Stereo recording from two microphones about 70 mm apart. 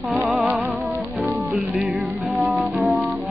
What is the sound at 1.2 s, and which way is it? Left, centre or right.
Music, centre.